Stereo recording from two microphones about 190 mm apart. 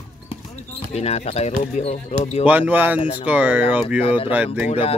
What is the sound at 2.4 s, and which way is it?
Speech, 10° right (ahead or behind).